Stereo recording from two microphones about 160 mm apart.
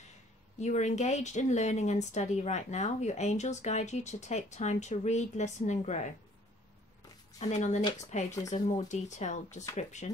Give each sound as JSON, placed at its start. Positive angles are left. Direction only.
{"t": 0.6, "sound": "speech", "side_deg": 45}
{"t": 7.3, "sound": "speech", "side_deg": 45}